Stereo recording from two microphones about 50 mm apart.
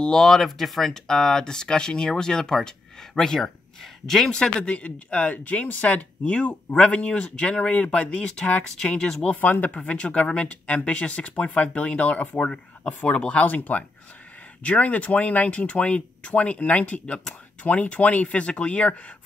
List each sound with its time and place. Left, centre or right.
0.0 s speech: centre
4.3 s speech: centre
9.4 s speech: left